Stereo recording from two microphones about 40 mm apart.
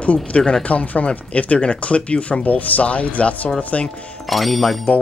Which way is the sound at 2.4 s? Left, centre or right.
Left.